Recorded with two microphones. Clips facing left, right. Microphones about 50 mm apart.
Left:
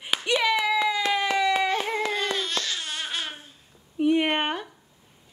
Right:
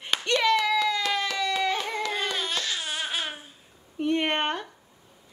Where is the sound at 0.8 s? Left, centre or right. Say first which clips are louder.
Left 2 dB; centre.